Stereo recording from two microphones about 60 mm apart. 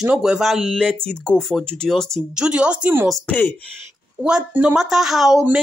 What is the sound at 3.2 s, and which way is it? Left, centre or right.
Speech, left.